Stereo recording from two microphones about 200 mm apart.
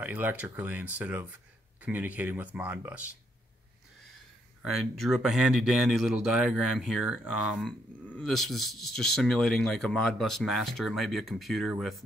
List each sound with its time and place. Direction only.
0.0 s speech: 10° right (ahead or behind)
4.6 s speech: centre (ahead or behind)
8.2 s speech: centre (ahead or behind)